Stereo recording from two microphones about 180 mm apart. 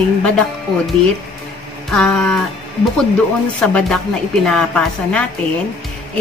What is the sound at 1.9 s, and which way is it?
Speech, centre (ahead or behind).